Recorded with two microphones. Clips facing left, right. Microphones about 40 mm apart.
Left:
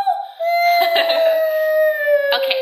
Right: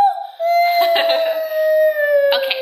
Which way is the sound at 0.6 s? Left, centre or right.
Centre.